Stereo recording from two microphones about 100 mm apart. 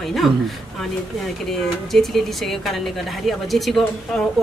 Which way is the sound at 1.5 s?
Centre (ahead or behind).